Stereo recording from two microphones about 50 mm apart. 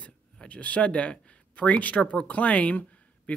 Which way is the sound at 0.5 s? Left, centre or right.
Left.